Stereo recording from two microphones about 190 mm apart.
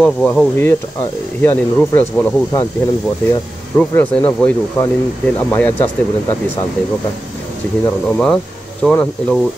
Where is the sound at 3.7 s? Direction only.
10° left (ahead or behind).